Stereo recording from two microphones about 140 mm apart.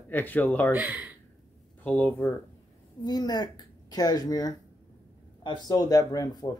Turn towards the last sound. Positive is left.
turn(degrees=25)  # may be behind; listen again after turning